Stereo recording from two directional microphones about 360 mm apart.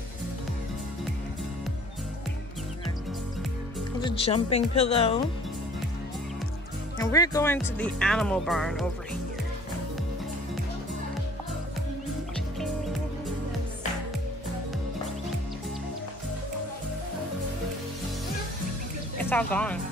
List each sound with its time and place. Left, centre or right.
4.0 s speech: centre
7.0 s speech: centre
19.1 s speech: centre